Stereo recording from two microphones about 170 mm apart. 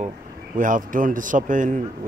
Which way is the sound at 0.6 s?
50° right (ahead or behind).